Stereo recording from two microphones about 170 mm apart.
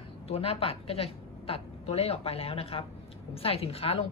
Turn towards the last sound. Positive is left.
turn(degrees=35)  # may be behind; listen again after turning